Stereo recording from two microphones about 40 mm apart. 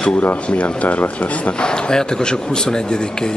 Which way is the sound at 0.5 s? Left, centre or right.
Left.